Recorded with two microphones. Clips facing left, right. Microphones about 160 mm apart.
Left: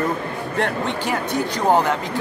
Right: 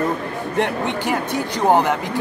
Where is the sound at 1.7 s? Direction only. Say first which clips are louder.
Right 1 dB; 20° right (ahead or behind).